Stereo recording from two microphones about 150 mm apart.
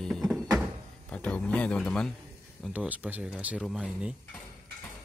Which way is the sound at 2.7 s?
10° right (ahead or behind).